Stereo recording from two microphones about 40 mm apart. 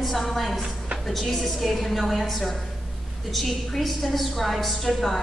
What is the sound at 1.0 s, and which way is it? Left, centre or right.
A woman's voice, centre.